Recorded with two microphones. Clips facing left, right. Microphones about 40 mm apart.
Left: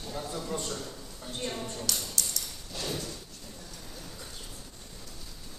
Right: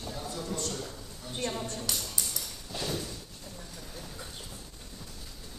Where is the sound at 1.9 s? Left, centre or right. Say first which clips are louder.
Left 2 dB; centre.